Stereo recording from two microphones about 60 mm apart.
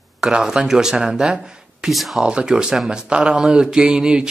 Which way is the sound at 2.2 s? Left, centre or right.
Centre.